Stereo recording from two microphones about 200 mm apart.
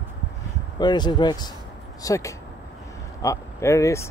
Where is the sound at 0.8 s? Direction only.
20° left (ahead or behind).